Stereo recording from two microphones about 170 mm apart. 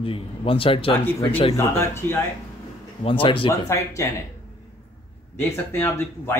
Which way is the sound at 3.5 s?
20° left (ahead or behind).